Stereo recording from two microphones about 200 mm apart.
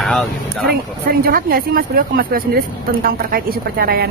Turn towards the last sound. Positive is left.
turn(degrees=-50)  # may be behind; listen again after turning